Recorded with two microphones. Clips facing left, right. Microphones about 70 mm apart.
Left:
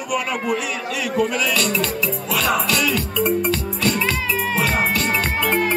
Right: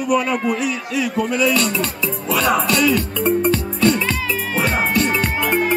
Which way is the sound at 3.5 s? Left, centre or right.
Right.